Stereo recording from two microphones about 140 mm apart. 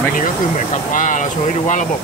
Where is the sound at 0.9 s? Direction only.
70° left (ahead or behind).